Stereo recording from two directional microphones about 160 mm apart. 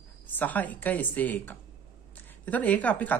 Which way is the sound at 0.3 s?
10° left (ahead or behind).